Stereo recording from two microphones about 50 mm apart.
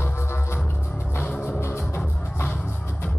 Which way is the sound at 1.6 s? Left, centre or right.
Left.